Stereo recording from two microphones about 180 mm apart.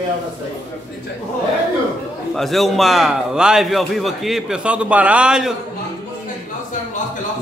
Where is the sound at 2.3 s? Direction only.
Centre (ahead or behind).